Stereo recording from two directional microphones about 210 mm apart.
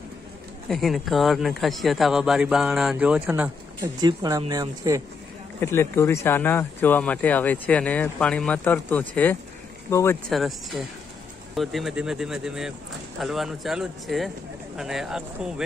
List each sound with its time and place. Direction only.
0.7 s speech: centre (ahead or behind); by 5.0 s 15° right (ahead or behind)
5.6 s speech: 10° left (ahead or behind)
10.3 s speech: centre (ahead or behind)